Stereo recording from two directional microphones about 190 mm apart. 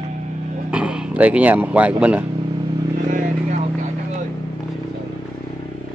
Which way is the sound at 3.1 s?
35° right (ahead or behind).